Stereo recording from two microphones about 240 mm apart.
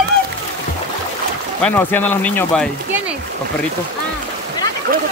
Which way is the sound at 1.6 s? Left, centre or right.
Centre.